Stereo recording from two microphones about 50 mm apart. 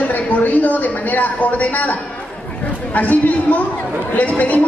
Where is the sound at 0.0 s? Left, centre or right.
Left.